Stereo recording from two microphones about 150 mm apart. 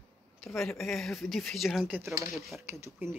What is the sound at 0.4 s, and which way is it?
Speech, centre (ahead or behind).